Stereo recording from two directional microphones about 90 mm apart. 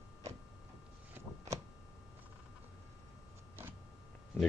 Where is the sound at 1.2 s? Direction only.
25° right (ahead or behind).